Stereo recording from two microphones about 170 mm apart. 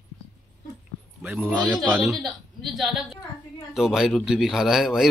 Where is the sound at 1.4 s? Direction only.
5° left (ahead or behind).